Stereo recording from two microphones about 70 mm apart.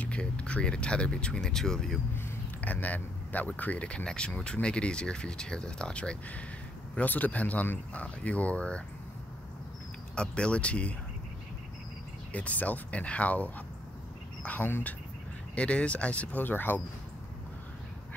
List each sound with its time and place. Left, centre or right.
0.0 s speech: centre
2.6 s speech: left
10.1 s speech: centre
12.3 s speech: left